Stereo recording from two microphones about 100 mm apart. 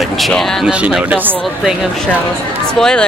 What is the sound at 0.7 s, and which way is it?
Speech, 10° right (ahead or behind).